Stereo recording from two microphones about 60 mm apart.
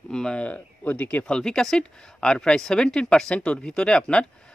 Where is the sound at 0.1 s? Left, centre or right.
Centre.